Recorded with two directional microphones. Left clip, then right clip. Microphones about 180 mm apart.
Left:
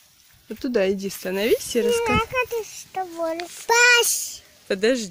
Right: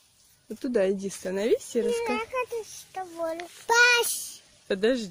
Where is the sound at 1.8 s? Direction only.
50° left (ahead or behind).